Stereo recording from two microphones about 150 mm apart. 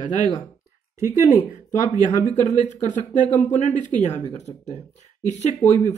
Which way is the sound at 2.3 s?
55° left (ahead or behind).